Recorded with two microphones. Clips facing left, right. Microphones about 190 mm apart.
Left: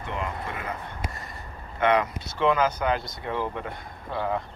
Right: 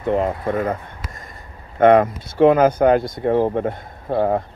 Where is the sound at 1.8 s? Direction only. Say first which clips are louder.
Right 10 dB; 50° right (ahead or behind).